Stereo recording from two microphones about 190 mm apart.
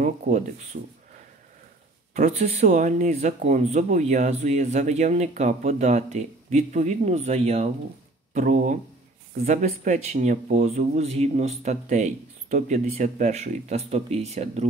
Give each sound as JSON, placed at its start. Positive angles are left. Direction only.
{"t": 0.3, "sound": "speech", "side_deg": -40}
{"t": 2.1, "sound": "speech", "side_deg": -35}